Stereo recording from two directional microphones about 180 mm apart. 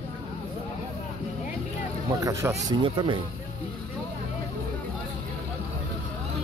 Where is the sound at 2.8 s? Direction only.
25° right (ahead or behind).